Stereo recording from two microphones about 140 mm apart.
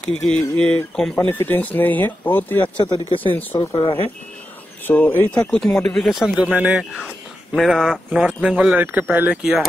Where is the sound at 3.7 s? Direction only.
40° left (ahead or behind).